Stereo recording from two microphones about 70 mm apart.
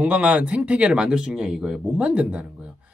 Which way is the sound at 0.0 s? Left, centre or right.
Centre.